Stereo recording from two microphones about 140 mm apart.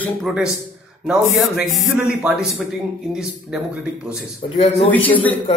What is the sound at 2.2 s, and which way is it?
Speech, centre (ahead or behind).